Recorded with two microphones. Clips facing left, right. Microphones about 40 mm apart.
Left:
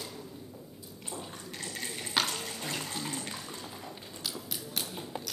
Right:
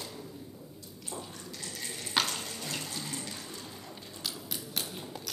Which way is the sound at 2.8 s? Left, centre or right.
Left.